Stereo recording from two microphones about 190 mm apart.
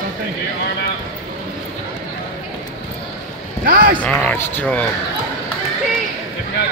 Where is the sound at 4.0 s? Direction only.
5° left (ahead or behind).